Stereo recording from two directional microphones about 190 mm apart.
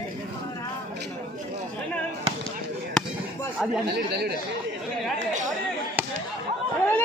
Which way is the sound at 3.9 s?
60° right (ahead or behind).